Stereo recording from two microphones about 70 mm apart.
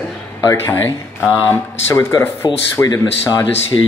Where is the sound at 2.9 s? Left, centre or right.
Left.